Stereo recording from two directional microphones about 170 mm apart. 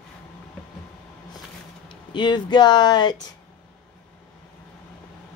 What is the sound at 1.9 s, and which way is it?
Speech, 25° left (ahead or behind).